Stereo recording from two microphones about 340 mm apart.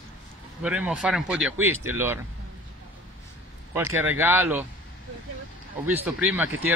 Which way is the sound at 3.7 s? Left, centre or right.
Centre.